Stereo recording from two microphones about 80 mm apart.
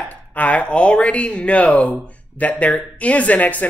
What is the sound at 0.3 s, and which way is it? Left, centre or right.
Speech, centre.